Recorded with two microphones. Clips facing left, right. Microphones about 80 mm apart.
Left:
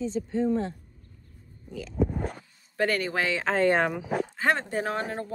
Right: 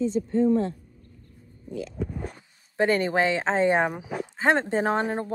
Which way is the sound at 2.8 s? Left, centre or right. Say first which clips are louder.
Right 4 dB; right.